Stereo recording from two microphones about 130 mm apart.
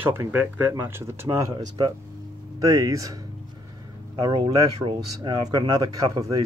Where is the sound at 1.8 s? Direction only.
40° right (ahead or behind).